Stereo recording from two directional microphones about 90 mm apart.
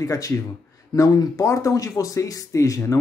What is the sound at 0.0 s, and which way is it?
Speech, 35° left (ahead or behind).